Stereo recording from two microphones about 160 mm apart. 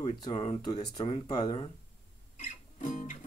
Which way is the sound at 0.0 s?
35° left (ahead or behind).